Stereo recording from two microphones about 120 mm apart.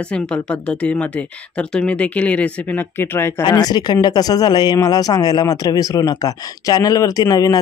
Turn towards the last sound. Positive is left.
turn(degrees=30)  # may be behind; listen again after turning